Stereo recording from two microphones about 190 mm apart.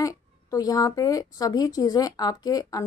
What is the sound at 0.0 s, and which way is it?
A woman's voice, 15° left (ahead or behind).